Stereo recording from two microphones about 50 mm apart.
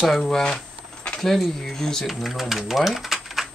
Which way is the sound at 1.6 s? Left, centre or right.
Centre.